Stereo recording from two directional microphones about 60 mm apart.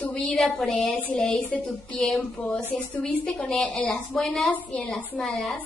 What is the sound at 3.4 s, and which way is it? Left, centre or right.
Speech, centre.